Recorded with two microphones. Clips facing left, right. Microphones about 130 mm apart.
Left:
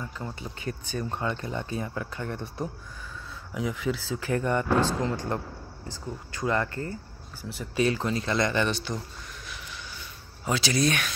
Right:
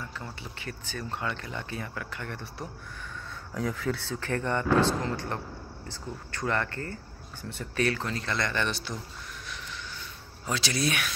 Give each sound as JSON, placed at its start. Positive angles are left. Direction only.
{"t": 0.0, "sound": "speech", "side_deg": 20}
{"t": 3.5, "sound": "speech", "side_deg": 5}
{"t": 8.6, "sound": "speech", "side_deg": 0}
{"t": 10.4, "sound": "speech", "side_deg": 0}